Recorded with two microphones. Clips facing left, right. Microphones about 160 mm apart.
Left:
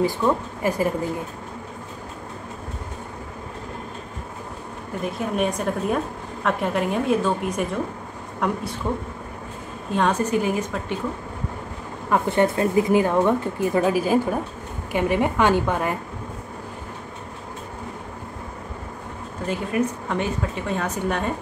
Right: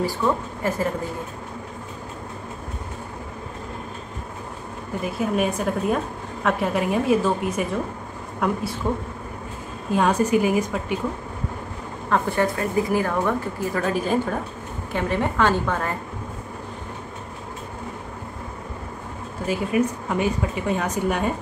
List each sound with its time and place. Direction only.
0.6 s a woman's voice: 10° left (ahead or behind)
5.0 s a woman's voice: 5° right (ahead or behind)
9.9 s a woman's voice: 10° right (ahead or behind)
12.1 s speech: 20° left (ahead or behind)
13.9 s a woman's voice: 10° left (ahead or behind)
19.4 s a woman's voice: 5° right (ahead or behind)